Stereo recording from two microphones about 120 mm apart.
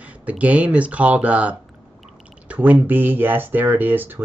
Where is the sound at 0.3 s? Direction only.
10° right (ahead or behind).